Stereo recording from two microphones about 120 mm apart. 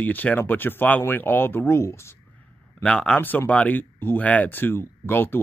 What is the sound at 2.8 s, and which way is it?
Speech, 5° left (ahead or behind).